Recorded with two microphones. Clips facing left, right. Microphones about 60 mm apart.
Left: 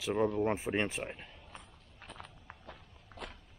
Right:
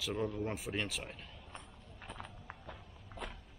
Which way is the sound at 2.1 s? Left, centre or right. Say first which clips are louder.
Right 2 dB; centre.